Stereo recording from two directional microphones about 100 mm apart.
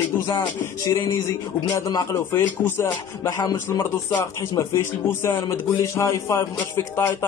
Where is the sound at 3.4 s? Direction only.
35° left (ahead or behind).